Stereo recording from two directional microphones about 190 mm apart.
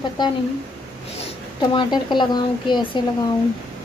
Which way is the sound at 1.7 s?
25° left (ahead or behind).